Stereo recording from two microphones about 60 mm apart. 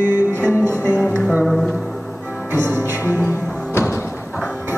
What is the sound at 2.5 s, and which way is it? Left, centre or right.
Music, right.